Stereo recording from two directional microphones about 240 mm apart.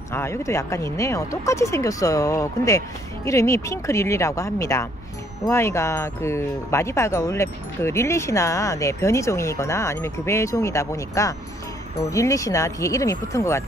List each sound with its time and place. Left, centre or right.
0.1 s speech: centre